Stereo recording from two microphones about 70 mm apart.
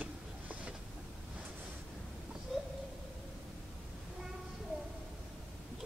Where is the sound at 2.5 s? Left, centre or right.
Centre.